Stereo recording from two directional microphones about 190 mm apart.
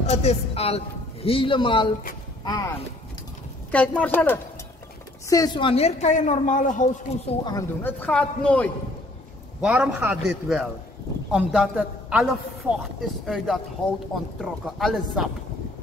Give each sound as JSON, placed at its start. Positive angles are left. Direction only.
{"t": 0.0, "sound": "a woman's voice", "side_deg": 35}
{"t": 3.7, "sound": "speech", "side_deg": 5}
{"t": 5.3, "sound": "a woman's voice", "side_deg": 20}
{"t": 7.4, "sound": "speech", "side_deg": 15}
{"t": 9.6, "sound": "a man's voice", "side_deg": -5}